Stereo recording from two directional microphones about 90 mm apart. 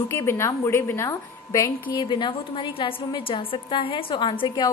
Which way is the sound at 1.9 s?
60° left (ahead or behind).